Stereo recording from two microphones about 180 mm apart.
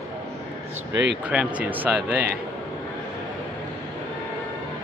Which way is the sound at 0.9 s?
85° right.